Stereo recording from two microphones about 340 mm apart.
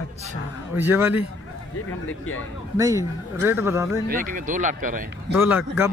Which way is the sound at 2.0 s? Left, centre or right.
Left.